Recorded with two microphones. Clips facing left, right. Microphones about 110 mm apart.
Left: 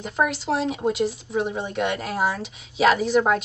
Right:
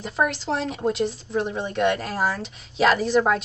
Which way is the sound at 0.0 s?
Centre (ahead or behind).